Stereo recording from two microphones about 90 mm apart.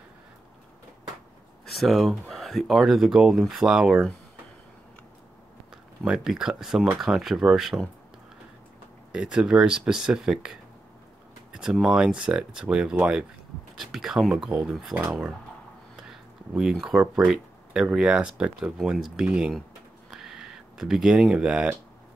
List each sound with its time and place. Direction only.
1.7 s speech: centre (ahead or behind)
6.0 s speech: 5° right (ahead or behind)
9.1 s speech: 10° right (ahead or behind)
16.0 s a sound: 5° right (ahead or behind)
17.3 s speech: 5° right (ahead or behind)
20.1 s a sound: 5° right (ahead or behind)